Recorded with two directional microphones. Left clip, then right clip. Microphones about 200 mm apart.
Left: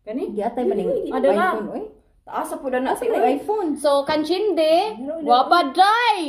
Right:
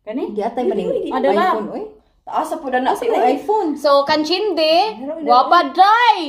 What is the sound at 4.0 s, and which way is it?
Speech, 15° left (ahead or behind).